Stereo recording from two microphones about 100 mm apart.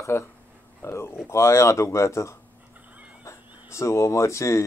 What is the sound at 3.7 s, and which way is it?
Speech, 30° left (ahead or behind).